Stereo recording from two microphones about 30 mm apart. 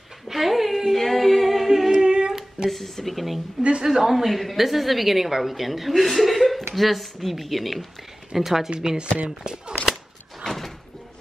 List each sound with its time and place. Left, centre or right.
0.3 s cat: centre
0.9 s singing: centre
2.0 s female singing: right
2.7 s a woman's voice: centre
3.8 s a woman's voice: centre
8.3 s speech: centre
8.8 s speech: right
10.4 s door: centre